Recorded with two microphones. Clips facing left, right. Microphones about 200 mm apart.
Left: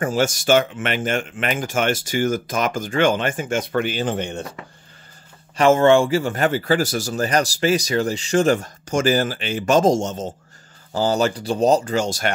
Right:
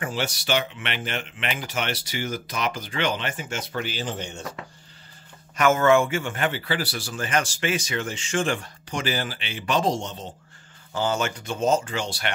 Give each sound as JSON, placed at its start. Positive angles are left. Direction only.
{"t": 0.0, "sound": "speech", "side_deg": 45}
{"t": 5.6, "sound": "speech", "side_deg": 30}